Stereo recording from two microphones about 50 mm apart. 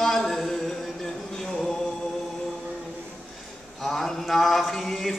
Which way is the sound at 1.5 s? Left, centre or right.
Centre.